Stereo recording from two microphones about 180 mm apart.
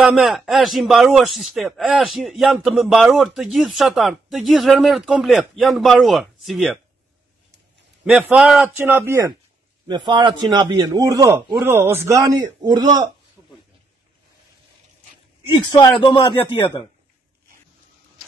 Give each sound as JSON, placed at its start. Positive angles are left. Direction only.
{"t": 0.0, "sound": "speech", "side_deg": 0}
{"t": 8.0, "sound": "a man's voice", "side_deg": -5}
{"t": 9.8, "sound": "a man's voice", "side_deg": -25}
{"t": 13.4, "sound": "a sound", "side_deg": 10}
{"t": 15.5, "sound": "a man's voice", "side_deg": 25}